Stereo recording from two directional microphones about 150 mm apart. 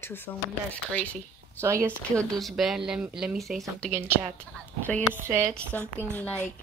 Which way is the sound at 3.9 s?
15° right (ahead or behind).